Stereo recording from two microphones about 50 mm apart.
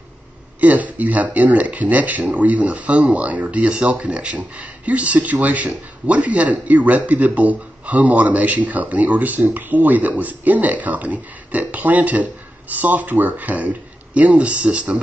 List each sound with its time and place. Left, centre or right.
0.6 s speech: right